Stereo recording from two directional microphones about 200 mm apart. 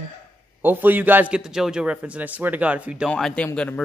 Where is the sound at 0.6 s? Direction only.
10° right (ahead or behind).